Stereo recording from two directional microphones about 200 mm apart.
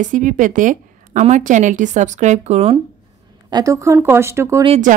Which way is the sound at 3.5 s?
20° right (ahead or behind).